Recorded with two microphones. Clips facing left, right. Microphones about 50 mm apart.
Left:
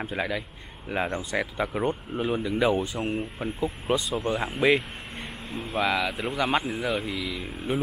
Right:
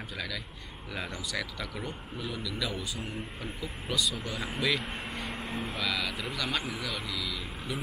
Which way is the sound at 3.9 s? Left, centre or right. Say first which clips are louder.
Left 6 dB; left.